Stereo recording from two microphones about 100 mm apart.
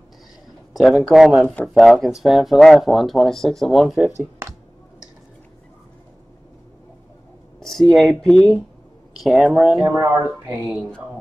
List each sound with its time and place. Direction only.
0.7 s speech: centre (ahead or behind)
1.4 s speech: 10° left (ahead or behind)
1.8 s speech: centre (ahead or behind)
7.6 s speech: centre (ahead or behind)
9.8 s speech: 25° right (ahead or behind)